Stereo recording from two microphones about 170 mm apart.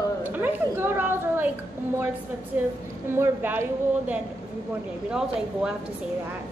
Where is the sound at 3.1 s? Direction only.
10° right (ahead or behind).